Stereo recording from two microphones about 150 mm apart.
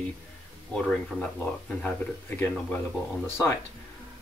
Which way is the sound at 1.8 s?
15° left (ahead or behind).